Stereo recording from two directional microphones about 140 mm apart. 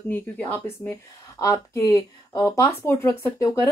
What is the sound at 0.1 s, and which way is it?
Speech, 15° left (ahead or behind).